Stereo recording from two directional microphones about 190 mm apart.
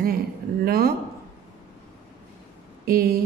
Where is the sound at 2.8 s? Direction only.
50° right (ahead or behind).